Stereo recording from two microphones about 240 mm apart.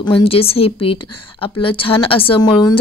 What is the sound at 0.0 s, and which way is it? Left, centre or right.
A woman's voice, left.